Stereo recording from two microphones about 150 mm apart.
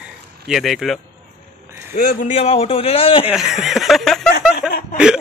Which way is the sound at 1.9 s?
70° left (ahead or behind).